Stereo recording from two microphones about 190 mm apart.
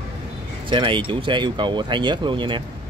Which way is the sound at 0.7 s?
25° right (ahead or behind).